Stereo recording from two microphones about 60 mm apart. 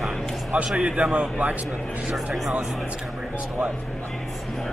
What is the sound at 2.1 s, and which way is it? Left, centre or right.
Speech, centre.